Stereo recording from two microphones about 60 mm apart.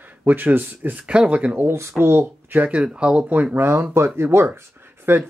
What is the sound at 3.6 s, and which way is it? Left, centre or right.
Speech, right.